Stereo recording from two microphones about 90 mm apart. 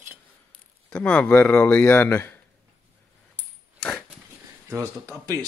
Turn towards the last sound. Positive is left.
turn(degrees=-40)  # may be behind; listen again after turning